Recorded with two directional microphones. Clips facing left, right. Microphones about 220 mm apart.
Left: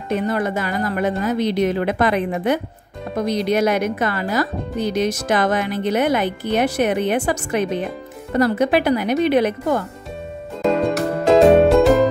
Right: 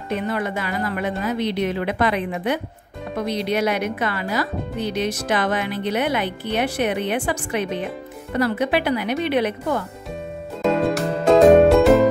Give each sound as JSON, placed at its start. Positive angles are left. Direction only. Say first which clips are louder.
{"t": 0.1, "sound": "speech", "louder": "left 4 dB", "side_deg": 45}
{"t": 10.6, "sound": "music", "louder": "left 1 dB", "side_deg": 0}